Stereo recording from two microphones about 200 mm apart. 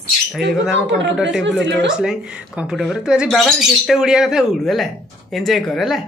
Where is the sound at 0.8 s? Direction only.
65° right (ahead or behind).